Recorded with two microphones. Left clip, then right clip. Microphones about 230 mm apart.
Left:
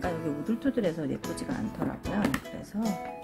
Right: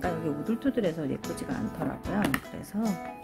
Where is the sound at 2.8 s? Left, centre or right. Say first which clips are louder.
Right 1 dB; centre.